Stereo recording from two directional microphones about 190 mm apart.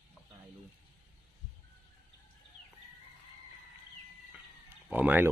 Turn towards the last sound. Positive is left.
turn(degrees=-10)  # may be behind; listen again after turning